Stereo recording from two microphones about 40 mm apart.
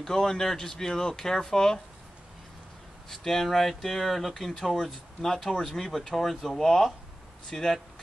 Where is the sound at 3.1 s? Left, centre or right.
Centre.